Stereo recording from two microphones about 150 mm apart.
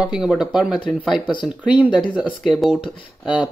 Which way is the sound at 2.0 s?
Centre (ahead or behind).